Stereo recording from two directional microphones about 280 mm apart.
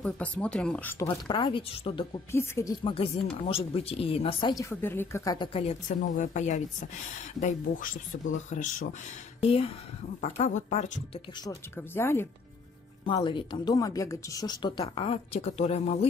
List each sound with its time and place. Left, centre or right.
0.0 s speech: centre
1.0 s a woman's voice: centre
11.4 s a woman's voice: centre